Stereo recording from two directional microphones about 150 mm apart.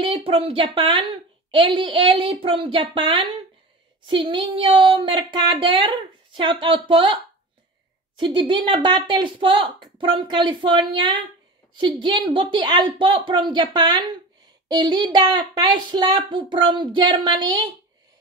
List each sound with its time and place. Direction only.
0.0 s speech: 35° right (ahead or behind)
8.2 s speech: 30° right (ahead or behind)